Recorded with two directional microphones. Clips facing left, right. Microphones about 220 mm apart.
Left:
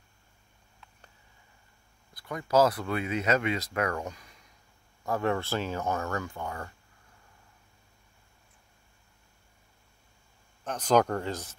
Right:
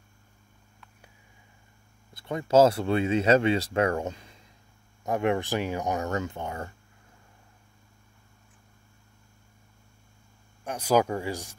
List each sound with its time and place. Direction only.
2.1 s speech: 25° right (ahead or behind)
10.6 s speech: 10° right (ahead or behind)